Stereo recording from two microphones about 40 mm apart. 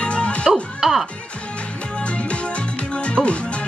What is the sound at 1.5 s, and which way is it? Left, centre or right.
Music, left.